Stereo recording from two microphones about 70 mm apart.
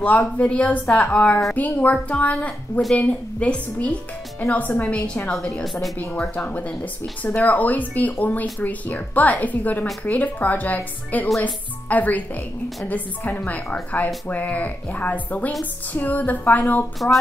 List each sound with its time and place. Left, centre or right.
0.0 s speech: centre
5.3 s a woman's voice: centre
6.3 s speech: left